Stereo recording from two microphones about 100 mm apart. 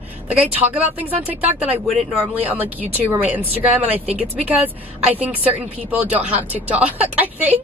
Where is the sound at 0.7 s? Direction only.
15° right (ahead or behind).